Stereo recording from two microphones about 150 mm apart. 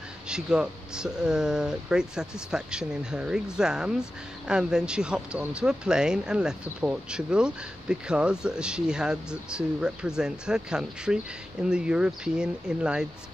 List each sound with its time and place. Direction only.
0.3 s speech: 5° right (ahead or behind)